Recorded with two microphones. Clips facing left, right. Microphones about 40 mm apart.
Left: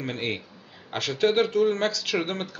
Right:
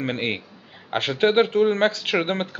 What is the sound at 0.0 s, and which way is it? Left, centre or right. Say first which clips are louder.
Speech: right 4 dB; right.